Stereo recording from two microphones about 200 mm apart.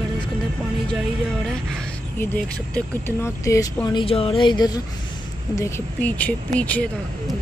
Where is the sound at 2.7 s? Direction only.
10° left (ahead or behind).